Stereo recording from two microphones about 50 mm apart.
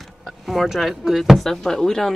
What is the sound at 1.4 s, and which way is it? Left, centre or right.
Speech, centre.